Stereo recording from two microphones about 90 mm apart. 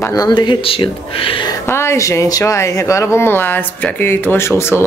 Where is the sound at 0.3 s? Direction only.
65° left (ahead or behind); by 1.5 s 80° left.